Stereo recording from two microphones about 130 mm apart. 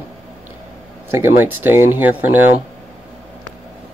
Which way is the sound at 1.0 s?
20° right (ahead or behind).